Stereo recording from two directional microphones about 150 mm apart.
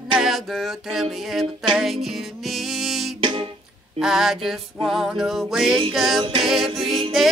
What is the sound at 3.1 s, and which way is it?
Music, 35° right (ahead or behind).